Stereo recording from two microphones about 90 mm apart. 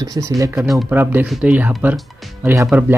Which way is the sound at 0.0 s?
40° right (ahead or behind).